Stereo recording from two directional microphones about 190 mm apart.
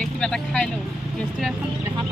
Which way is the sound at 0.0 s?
5° left (ahead or behind).